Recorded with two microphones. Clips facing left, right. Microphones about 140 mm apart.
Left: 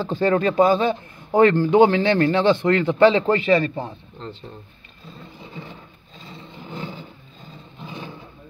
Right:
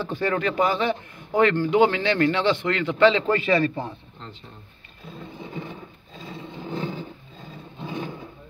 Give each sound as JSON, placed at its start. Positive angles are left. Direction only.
{"t": 0.0, "sound": "speech", "side_deg": 30}
{"t": 5.5, "sound": "a sound", "side_deg": -20}
{"t": 6.7, "sound": "vehicle", "side_deg": -20}